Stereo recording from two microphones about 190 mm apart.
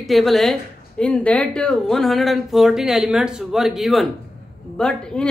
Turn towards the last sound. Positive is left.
turn(degrees=5)  # may be behind; listen again after turning